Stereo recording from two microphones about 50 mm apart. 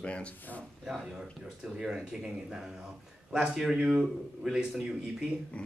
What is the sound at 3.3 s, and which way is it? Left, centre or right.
A man's voice, centre.